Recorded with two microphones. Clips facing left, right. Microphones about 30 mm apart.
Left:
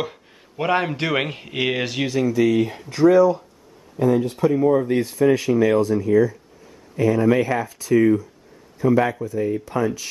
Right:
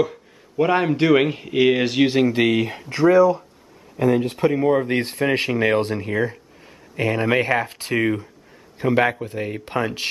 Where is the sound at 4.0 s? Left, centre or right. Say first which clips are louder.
Even; right.